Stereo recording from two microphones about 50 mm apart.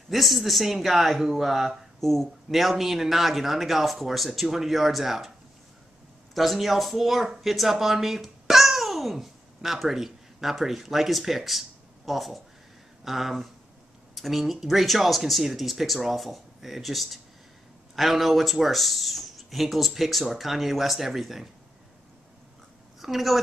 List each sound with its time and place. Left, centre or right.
0.1 s speech: centre
6.3 s a child's voice: centre
22.9 s a woman's voice: centre